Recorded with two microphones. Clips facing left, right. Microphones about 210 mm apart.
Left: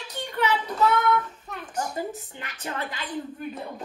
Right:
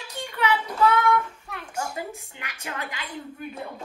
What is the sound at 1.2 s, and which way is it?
A woman's voice, 10° right (ahead or behind).